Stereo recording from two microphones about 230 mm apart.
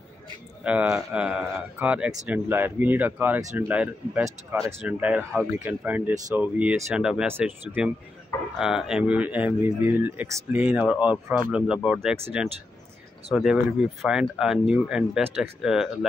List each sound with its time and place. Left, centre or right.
0.7 s speech: centre